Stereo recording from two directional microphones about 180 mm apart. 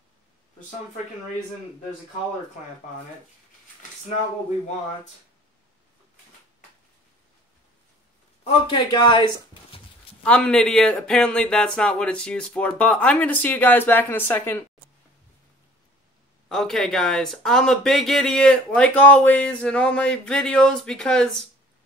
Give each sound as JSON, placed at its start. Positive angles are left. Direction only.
{"t": 8.5, "sound": "a man's voice", "side_deg": 25}
{"t": 10.2, "sound": "speech", "side_deg": 5}
{"t": 16.4, "sound": "speech", "side_deg": 0}